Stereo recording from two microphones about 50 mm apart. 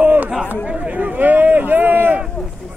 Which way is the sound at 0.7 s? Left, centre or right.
Right.